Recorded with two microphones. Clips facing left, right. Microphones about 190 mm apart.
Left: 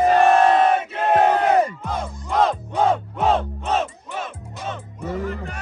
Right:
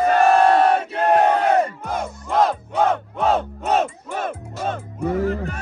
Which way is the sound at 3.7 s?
50° right (ahead or behind).